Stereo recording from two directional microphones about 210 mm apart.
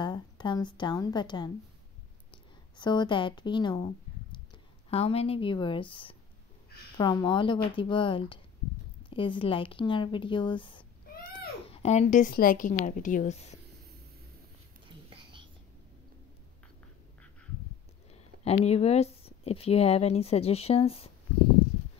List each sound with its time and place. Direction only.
0.0 s a woman's voice: 20° left (ahead or behind)
2.3 s a sound: 20° left (ahead or behind)
4.8 s speech: 30° left (ahead or behind)
14.9 s whispering: 25° right (ahead or behind)
18.1 s speech: 30° left (ahead or behind)